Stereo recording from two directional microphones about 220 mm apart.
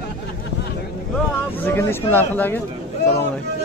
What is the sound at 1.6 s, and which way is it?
Speech, 10° left (ahead or behind).